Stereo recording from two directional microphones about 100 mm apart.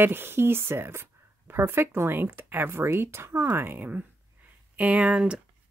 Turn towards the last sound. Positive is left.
turn(degrees=-10)  # may be behind; listen again after turning